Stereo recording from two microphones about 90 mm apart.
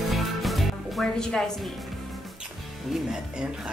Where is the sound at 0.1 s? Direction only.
Centre (ahead or behind).